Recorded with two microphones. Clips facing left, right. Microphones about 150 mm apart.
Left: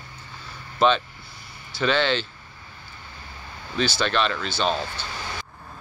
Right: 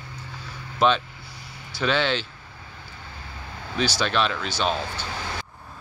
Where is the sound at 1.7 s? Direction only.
5° right (ahead or behind).